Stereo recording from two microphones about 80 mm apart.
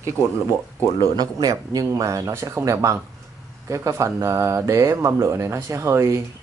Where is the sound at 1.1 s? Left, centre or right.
Right.